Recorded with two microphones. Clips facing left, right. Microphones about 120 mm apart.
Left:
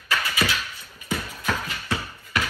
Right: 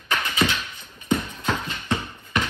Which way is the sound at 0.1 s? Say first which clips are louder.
Right 2 dB; 20° right (ahead or behind).